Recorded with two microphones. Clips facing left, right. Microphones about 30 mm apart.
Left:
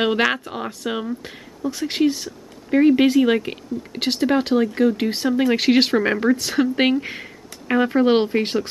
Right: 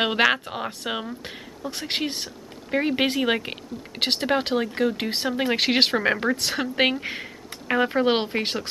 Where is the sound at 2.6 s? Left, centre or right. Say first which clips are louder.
Left 8 dB; centre.